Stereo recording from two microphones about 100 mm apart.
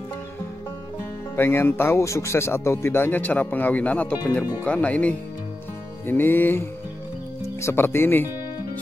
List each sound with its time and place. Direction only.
1.3 s speech: 25° left (ahead or behind)